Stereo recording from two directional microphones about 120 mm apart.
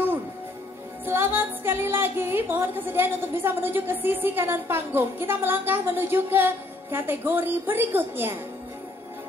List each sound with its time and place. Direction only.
1.0 s music: 20° right (ahead or behind)